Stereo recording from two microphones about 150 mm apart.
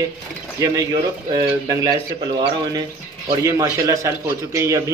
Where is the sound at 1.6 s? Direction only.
25° right (ahead or behind).